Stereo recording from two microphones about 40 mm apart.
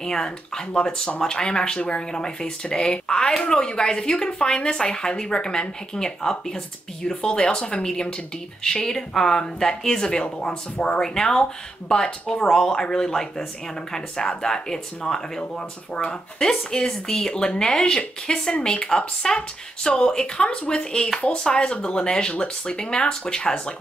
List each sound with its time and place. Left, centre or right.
0.0 s speech: centre
11.0 s speech: centre
16.4 s speech: centre